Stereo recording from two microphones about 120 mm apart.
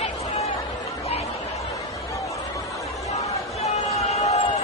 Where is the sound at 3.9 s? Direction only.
60° left (ahead or behind).